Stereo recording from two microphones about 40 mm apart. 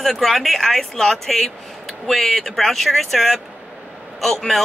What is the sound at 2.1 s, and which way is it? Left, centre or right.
Music, centre.